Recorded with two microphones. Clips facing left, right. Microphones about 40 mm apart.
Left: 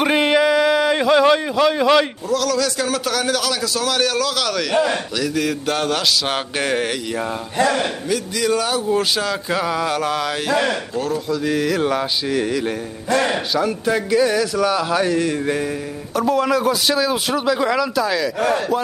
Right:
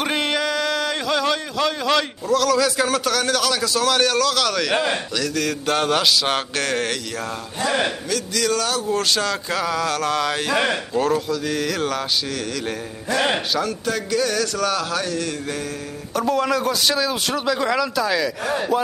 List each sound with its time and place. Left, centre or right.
0.0 s a sound: centre
2.2 s a man's voice: centre
6.6 s speech: centre
8.1 s speech: centre
10.5 s speech: centre
11.0 s speech: centre
13.7 s speech: centre
15.1 s mantra: left
16.2 s a man's voice: centre